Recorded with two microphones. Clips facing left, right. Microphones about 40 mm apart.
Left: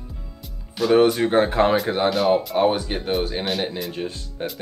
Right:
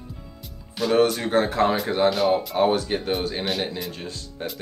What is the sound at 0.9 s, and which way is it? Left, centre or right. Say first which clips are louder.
Speech: left 3 dB; centre.